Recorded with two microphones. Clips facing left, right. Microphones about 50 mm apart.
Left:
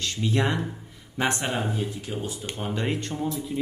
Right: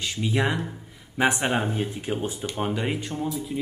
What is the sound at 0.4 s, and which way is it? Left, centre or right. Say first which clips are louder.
Speech: right 1 dB; centre.